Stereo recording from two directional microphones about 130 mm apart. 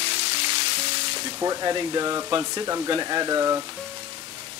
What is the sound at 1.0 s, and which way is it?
Speech, 30° right (ahead or behind).